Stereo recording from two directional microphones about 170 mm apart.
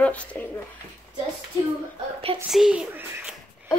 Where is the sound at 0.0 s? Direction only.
10° left (ahead or behind).